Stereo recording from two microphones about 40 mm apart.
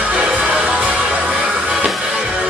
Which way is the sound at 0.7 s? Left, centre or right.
Right.